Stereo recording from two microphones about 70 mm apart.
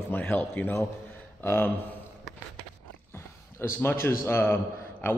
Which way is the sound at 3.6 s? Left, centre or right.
Left.